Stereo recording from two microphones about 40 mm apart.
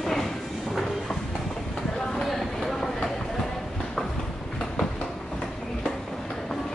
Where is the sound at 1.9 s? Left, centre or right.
Centre.